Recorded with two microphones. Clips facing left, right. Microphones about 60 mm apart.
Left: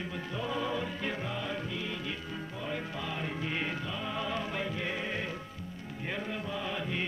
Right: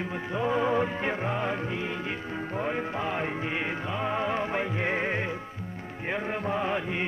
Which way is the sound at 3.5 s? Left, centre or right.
Right.